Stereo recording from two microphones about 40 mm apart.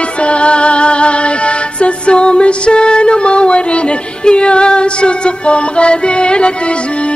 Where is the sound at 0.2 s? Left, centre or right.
Left.